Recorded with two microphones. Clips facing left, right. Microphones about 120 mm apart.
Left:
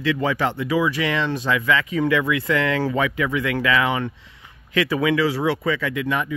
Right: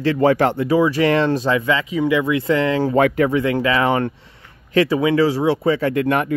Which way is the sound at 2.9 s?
45° right (ahead or behind).